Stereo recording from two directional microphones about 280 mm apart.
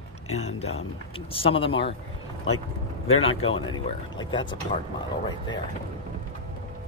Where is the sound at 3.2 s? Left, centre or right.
Left.